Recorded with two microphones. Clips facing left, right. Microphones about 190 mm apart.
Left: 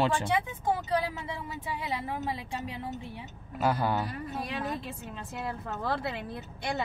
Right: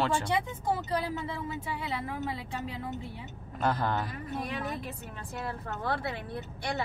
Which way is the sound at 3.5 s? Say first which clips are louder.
Left 2 dB; 10° left (ahead or behind).